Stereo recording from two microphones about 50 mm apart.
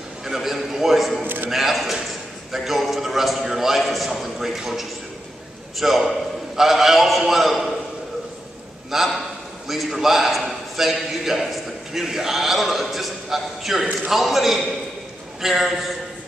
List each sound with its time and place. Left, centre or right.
0.2 s a man's voice: centre
8.9 s a man's voice: centre